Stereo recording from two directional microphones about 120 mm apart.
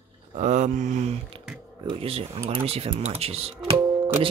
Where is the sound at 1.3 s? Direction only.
45° right (ahead or behind).